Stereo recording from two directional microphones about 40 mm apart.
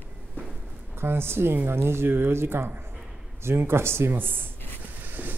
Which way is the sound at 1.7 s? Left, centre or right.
Right.